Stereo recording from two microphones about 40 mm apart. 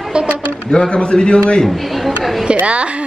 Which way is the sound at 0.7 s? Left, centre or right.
Left.